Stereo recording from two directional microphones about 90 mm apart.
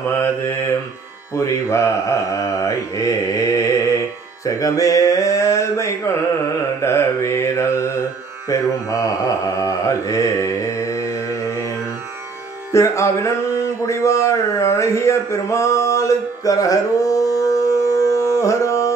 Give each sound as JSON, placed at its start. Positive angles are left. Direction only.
{"t": 1.3, "sound": "mantra", "side_deg": 35}
{"t": 12.7, "sound": "mantra", "side_deg": 35}
{"t": 13.8, "sound": "a sound", "side_deg": 35}